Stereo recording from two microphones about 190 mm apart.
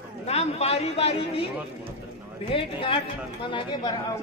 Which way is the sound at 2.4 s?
25° left (ahead or behind).